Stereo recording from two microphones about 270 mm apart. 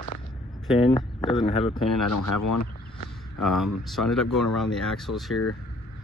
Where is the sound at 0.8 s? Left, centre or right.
Left.